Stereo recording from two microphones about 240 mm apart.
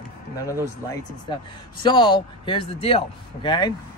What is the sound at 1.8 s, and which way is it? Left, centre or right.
Speech, centre.